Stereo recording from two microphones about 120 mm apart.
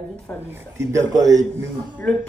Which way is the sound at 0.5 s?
25° right (ahead or behind).